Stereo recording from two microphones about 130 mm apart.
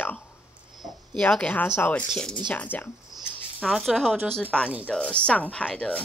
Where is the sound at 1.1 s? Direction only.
10° left (ahead or behind).